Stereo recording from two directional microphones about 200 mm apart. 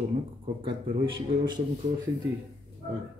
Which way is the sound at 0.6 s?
25° right (ahead or behind).